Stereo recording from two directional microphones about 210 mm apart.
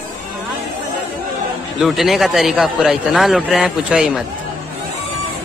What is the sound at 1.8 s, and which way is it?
A man's voice, centre (ahead or behind).